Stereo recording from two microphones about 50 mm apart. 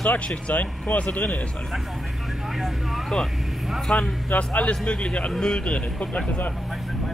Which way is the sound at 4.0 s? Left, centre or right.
Left.